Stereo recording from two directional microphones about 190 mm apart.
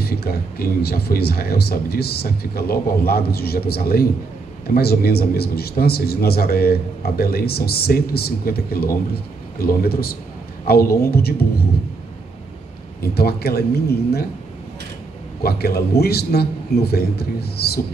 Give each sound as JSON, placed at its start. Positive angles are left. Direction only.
{"t": 0.0, "sound": "a man's voice", "side_deg": 55}
{"t": 13.0, "sound": "a man's voice", "side_deg": 55}
{"t": 15.4, "sound": "a man's voice", "side_deg": 55}